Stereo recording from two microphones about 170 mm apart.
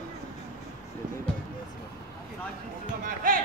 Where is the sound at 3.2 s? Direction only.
55° right (ahead or behind).